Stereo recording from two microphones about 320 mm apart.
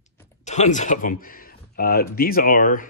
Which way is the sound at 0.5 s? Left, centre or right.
Left.